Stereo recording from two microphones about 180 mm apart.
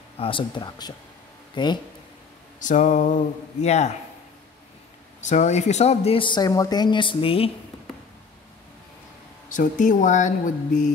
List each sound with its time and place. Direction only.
0.2 s speech: 30° left (ahead or behind)
2.6 s speech: 45° left (ahead or behind)
5.2 s speech: 40° left (ahead or behind)
9.5 s speech: 45° left (ahead or behind)